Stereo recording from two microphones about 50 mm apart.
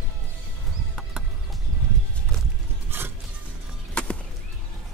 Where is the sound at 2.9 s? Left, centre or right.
Right.